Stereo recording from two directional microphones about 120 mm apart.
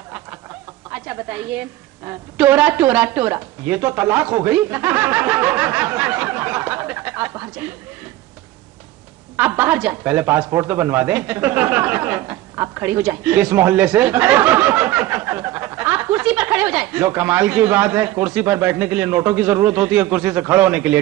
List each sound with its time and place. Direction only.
0.9 s a woman's voice: 10° right (ahead or behind)
9.4 s a woman's voice: 15° right (ahead or behind)